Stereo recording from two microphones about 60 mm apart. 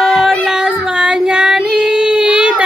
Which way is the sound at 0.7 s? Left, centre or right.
Centre.